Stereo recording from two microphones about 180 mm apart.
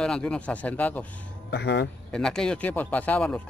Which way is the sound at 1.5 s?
75° left (ahead or behind).